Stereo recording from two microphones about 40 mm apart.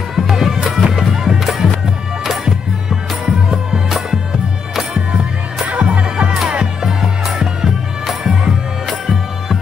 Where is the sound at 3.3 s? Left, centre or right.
Right.